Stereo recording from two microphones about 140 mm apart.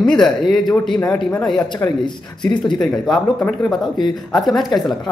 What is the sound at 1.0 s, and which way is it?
Speech, 25° left (ahead or behind).